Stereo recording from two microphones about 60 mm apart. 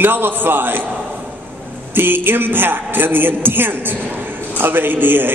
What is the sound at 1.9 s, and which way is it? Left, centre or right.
A man's voice, right.